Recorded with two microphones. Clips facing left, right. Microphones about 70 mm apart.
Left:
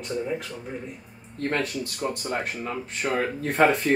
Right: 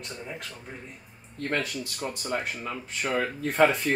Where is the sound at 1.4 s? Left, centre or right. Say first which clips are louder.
Left 3 dB; left.